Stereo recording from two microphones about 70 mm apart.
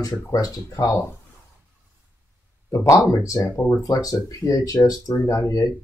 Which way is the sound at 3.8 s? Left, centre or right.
Left.